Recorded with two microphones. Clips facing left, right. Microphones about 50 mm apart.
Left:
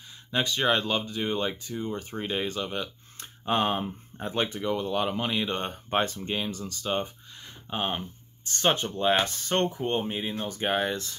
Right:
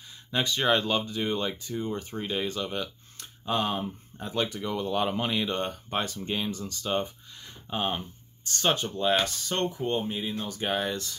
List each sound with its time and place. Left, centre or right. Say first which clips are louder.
0.3 s speech: even; centre
1.7 s speech: right 1 dB; centre
2.0 s speech: even; centre
3.2 s speech: left 2 dB; left
4.6 s speech: left 3 dB; centre
4.8 s speech: even; centre
5.5 s speech: right 1 dB; centre
5.9 s speech: left 9 dB; left
6.1 s speech: even; centre